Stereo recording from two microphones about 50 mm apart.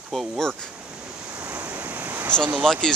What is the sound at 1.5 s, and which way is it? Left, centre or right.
Waves, right.